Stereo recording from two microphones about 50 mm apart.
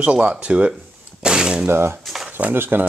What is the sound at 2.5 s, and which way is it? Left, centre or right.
Speech, right.